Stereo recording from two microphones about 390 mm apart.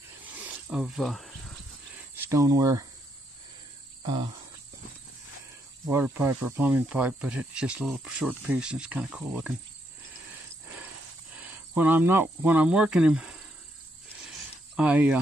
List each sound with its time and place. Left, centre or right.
0.7 s snake: centre
2.2 s speech: centre
4.0 s cricket: centre
5.9 s speech: centre
11.3 s speech: centre
14.3 s a sound: centre